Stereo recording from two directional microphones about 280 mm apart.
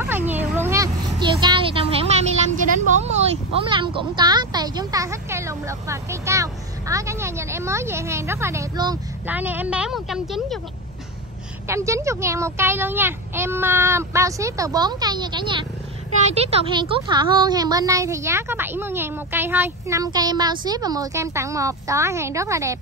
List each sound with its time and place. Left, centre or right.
0.0 s a sound: centre
2.9 s speech: right; by 10.6 s centre
11.6 s a woman's voice: centre